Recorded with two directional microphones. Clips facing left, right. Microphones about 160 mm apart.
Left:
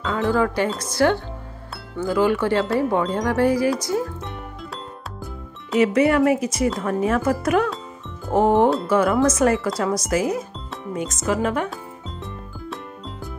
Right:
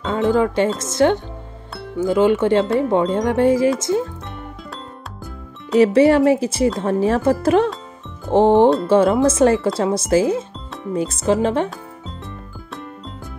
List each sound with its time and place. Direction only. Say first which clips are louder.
0.0 s music: right 3 dB; 20° right (ahead or behind)
0.7 s speech: right 3 dB; 20° right (ahead or behind)
5.8 s speech: right 4 dB; 30° right (ahead or behind)